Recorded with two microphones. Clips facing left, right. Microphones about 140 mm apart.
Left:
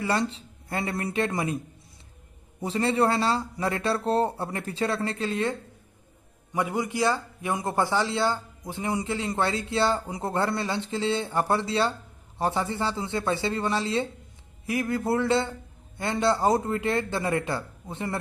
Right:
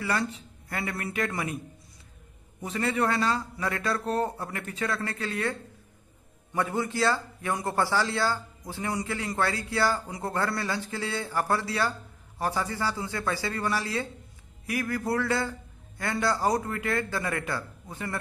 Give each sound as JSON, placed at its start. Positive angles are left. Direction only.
{"t": 0.0, "sound": "a man's voice", "side_deg": 30}
{"t": 2.6, "sound": "a man's voice", "side_deg": 30}